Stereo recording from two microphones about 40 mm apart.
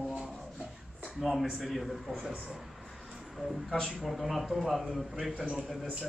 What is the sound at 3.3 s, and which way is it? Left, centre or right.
Speech, centre.